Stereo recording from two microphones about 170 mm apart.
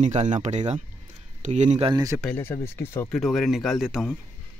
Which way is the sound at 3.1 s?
Centre (ahead or behind).